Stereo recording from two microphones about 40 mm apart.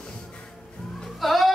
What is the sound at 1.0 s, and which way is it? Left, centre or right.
Music, centre.